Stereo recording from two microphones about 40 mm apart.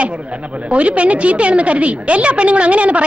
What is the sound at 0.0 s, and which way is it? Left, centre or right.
A woman's voice, right.